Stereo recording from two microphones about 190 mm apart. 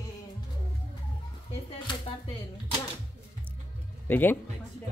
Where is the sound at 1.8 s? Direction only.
25° left (ahead or behind).